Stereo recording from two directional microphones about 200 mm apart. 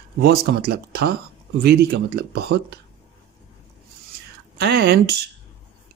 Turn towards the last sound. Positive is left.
turn(degrees=-55)  # may be behind; listen again after turning